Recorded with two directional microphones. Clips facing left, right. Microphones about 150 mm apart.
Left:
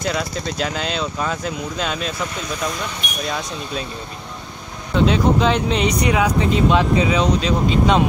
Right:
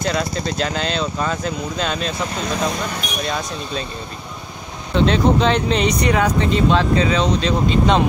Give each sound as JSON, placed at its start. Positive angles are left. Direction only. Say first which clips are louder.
{"t": 0.0, "sound": "speech", "louder": "right 2 dB", "side_deg": 5}
{"t": 3.3, "sound": "speech", "louder": "left 1 dB", "side_deg": 0}
{"t": 5.0, "sound": "speech", "louder": "right 1 dB", "side_deg": 5}